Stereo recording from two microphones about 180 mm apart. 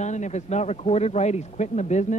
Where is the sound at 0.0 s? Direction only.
40° left (ahead or behind).